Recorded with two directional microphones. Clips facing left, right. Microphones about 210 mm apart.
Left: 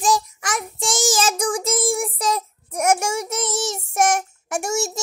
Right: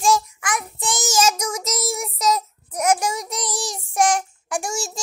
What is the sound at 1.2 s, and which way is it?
Child singing, 30° left (ahead or behind).